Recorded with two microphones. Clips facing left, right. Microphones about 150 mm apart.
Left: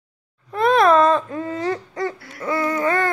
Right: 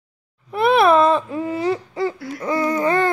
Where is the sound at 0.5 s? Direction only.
10° right (ahead or behind).